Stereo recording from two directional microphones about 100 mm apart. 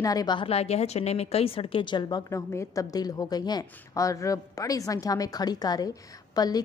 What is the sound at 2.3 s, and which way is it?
A woman's voice, 30° left (ahead or behind).